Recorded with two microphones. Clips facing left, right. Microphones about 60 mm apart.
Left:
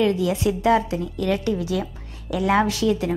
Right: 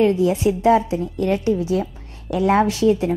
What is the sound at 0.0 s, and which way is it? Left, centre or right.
Speech, right.